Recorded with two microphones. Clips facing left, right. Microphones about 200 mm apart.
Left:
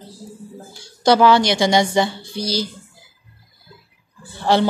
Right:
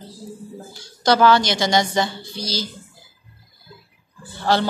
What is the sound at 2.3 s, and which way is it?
Speech, 60° left (ahead or behind).